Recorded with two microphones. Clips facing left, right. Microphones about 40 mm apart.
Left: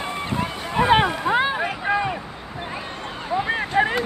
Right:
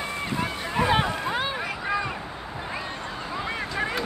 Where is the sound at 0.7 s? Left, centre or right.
Left.